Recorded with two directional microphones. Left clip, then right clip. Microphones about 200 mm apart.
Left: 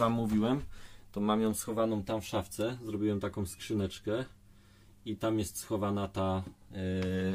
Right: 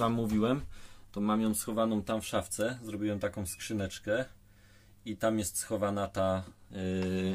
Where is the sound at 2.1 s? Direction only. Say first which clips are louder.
Right 2 dB; 25° right (ahead or behind).